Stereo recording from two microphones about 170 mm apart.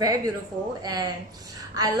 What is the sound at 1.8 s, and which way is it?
Speech, 20° right (ahead or behind).